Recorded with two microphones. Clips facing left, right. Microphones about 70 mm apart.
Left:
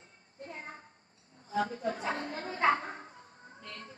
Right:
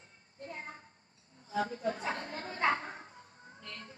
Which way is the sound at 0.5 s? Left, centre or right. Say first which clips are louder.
Even; left.